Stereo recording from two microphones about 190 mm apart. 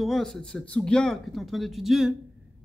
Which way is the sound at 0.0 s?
Centre (ahead or behind).